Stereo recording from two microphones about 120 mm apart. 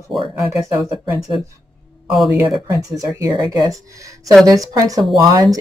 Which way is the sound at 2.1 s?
5° right (ahead or behind).